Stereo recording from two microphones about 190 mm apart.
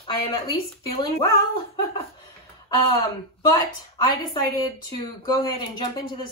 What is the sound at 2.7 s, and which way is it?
Speech, 20° left (ahead or behind).